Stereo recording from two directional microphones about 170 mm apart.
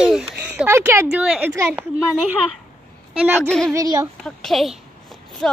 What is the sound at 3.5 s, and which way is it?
Speech, 5° left (ahead or behind).